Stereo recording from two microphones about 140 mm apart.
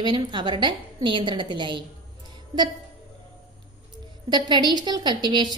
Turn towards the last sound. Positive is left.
turn(degrees=-30)  # may be behind; listen again after turning